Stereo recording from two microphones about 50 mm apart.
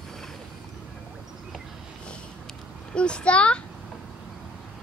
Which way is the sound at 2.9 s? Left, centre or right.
Left.